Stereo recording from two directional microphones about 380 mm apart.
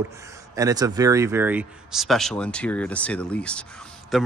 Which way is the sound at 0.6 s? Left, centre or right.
Centre.